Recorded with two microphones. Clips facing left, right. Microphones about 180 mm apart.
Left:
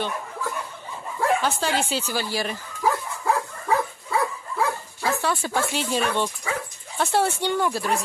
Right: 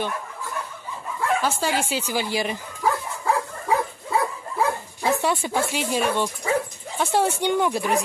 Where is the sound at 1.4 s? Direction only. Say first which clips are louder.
Even; 10° right (ahead or behind).